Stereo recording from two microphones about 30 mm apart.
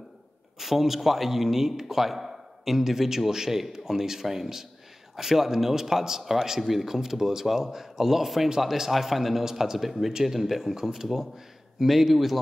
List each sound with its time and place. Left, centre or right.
0.6 s a man's voice: centre
8.9 s speech: centre
9.4 s a man's voice: centre